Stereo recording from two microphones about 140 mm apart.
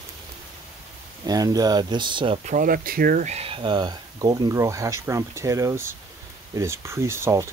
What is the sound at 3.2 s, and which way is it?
Speech, 45° right (ahead or behind).